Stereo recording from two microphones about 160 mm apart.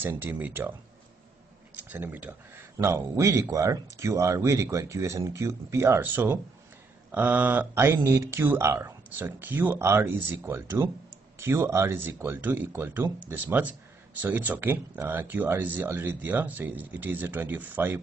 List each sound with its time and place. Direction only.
0.0 s speech: 15° right (ahead or behind)
1.8 s speech: 10° right (ahead or behind)